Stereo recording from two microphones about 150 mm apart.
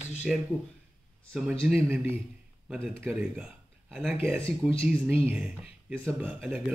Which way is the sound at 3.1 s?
10° right (ahead or behind).